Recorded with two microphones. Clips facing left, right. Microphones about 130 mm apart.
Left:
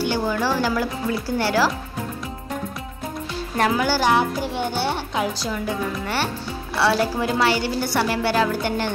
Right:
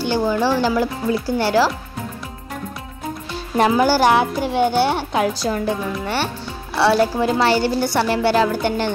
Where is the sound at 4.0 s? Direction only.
75° right (ahead or behind).